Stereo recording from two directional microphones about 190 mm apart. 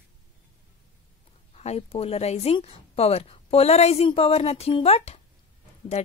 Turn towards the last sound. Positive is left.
turn(degrees=35)  # may be behind; listen again after turning